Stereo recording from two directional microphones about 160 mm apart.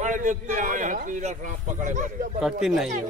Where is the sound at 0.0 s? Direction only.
55° right (ahead or behind).